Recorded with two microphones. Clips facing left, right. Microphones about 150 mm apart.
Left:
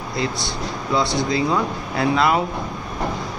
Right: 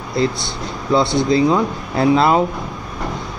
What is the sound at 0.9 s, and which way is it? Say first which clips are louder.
Speech: right 6 dB; 30° right (ahead or behind).